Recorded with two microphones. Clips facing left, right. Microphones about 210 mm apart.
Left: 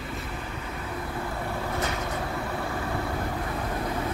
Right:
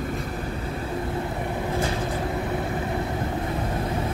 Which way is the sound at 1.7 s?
30° right (ahead or behind).